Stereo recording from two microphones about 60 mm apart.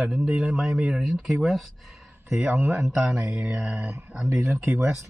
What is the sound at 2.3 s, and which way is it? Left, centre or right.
A man's voice, centre.